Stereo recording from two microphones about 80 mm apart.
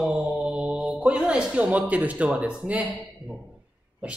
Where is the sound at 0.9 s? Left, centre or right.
Centre.